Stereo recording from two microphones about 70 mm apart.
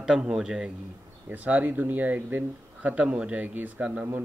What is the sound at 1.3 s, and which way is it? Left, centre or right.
Speech, right.